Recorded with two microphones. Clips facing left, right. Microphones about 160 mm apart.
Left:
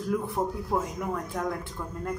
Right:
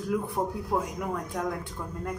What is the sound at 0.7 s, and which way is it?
A woman's voice, 15° right (ahead or behind).